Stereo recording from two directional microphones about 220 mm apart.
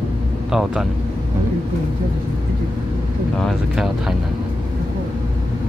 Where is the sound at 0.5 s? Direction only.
Centre (ahead or behind).